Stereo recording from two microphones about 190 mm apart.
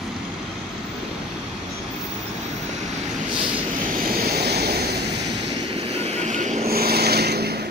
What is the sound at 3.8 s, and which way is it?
Vehicle, 45° right (ahead or behind).